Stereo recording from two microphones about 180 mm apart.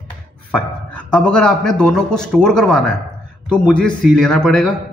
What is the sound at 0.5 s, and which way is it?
A man's voice, 5° left (ahead or behind).